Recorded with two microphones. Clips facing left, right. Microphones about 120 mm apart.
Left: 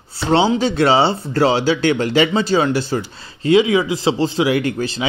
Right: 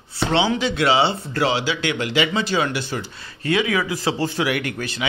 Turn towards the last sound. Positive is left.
turn(degrees=30)  # may be behind; listen again after turning